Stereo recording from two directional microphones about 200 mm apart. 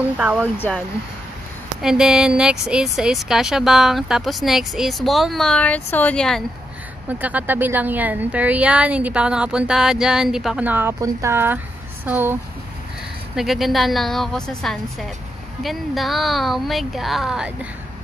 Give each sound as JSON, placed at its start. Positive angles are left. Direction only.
{"t": 0.2, "sound": "speech", "side_deg": -5}
{"t": 0.6, "sound": "speech", "side_deg": 5}
{"t": 1.8, "sound": "speech", "side_deg": -5}
{"t": 7.1, "sound": "a woman's voice", "side_deg": -10}
{"t": 13.4, "sound": "speech", "side_deg": 0}